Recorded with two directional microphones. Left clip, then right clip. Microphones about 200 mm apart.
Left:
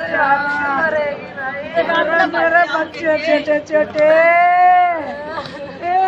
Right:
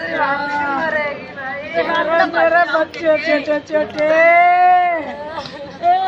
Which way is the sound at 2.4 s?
5° left (ahead or behind).